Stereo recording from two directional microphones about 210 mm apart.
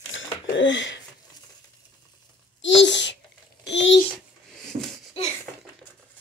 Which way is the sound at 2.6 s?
60° left (ahead or behind).